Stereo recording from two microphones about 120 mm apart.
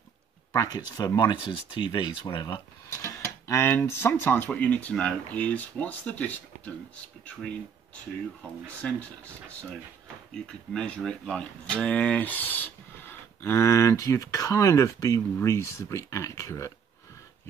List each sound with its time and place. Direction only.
0.5 s speech: 30° left (ahead or behind)
2.9 s speech: 25° left (ahead or behind)